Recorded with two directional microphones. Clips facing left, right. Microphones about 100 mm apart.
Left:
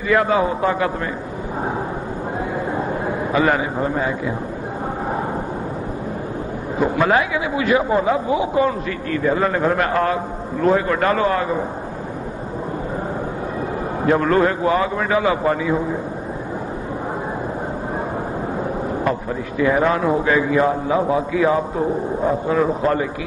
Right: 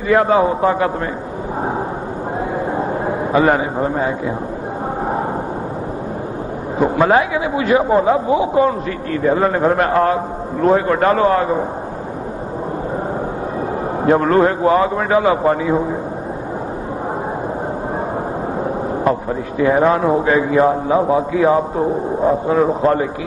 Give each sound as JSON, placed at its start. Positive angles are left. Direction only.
{"t": 0.1, "sound": "speech", "side_deg": -35}
{"t": 2.7, "sound": "a sound", "side_deg": -30}
{"t": 6.8, "sound": "speech", "side_deg": -30}
{"t": 14.0, "sound": "speech", "side_deg": -35}
{"t": 19.6, "sound": "speech", "side_deg": -30}